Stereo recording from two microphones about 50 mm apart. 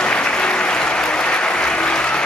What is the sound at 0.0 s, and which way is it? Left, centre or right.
Applause, centre.